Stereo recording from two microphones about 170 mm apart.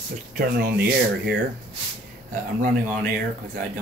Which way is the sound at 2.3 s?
55° right (ahead or behind).